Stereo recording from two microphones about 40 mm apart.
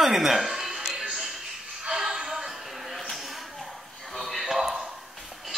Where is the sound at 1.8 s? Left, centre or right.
Centre.